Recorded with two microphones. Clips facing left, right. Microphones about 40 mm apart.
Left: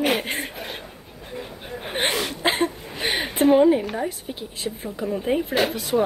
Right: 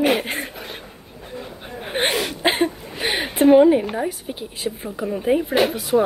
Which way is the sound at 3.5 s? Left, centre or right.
Centre.